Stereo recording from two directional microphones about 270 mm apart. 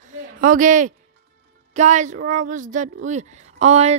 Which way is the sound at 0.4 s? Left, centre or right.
Right.